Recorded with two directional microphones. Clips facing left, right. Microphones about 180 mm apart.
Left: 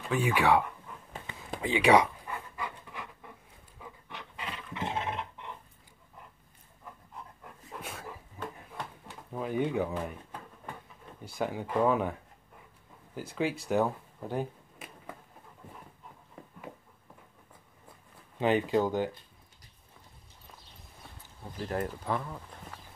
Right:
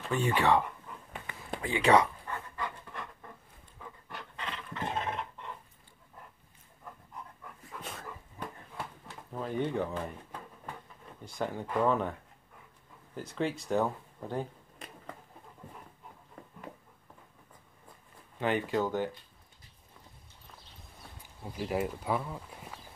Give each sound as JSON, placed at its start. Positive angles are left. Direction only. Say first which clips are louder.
{"t": 0.0, "sound": "speech", "louder": "left 1 dB", "side_deg": 5}
{"t": 1.6, "sound": "pant", "louder": "left 2 dB", "side_deg": 15}
{"t": 4.4, "sound": "dog", "louder": "left 1 dB", "side_deg": 10}
{"t": 7.8, "sound": "dog", "louder": "left 1 dB", "side_deg": 5}
{"t": 8.7, "sound": "a sound", "louder": "even", "side_deg": 5}
{"t": 11.2, "sound": "speech", "louder": "left 2 dB", "side_deg": 5}
{"t": 13.1, "sound": "a sound", "louder": "left 1 dB", "side_deg": 5}
{"t": 18.4, "sound": "speech", "louder": "left 4 dB", "side_deg": 20}
{"t": 21.2, "sound": "speech", "louder": "right 2 dB", "side_deg": -10}